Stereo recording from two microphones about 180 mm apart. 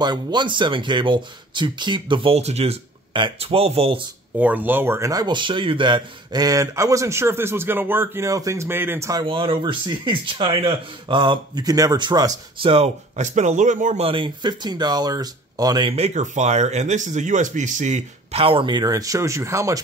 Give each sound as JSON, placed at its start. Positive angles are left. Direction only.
{"t": 0.0, "sound": "speech", "side_deg": -25}
{"t": 4.4, "sound": "speech", "side_deg": -10}
{"t": 9.2, "sound": "speech", "side_deg": -30}
{"t": 14.0, "sound": "speech", "side_deg": -25}
{"t": 16.0, "sound": "speech", "side_deg": -40}